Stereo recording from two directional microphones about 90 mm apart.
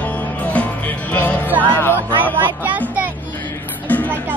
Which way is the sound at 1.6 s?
20° left (ahead or behind).